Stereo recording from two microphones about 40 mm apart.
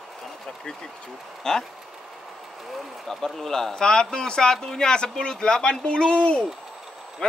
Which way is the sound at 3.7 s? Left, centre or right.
Left.